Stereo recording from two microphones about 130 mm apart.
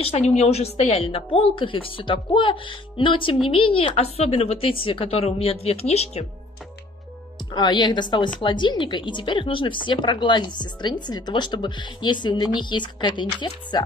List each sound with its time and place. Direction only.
0.3 s speech: 55° left (ahead or behind)
7.5 s speech: 35° left (ahead or behind)